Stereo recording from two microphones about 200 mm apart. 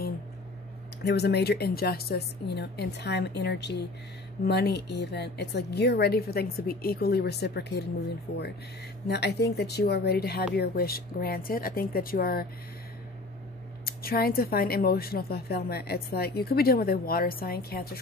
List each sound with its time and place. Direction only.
1.0 s a woman's voice: 55° left (ahead or behind)
9.0 s a woman's voice: 55° left (ahead or behind)
13.8 s a woman's voice: 50° left (ahead or behind)